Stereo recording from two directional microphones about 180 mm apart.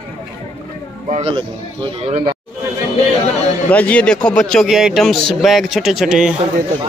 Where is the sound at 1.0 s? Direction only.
35° right (ahead or behind).